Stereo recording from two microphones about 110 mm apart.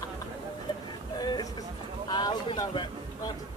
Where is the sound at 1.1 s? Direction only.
35° left (ahead or behind).